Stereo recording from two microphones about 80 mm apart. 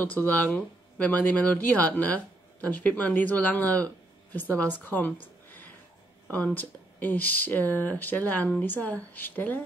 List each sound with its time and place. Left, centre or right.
0.0 s speech: left
6.2 s speech: centre